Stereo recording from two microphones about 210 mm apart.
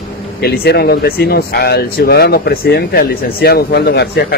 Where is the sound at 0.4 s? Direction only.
50° left (ahead or behind).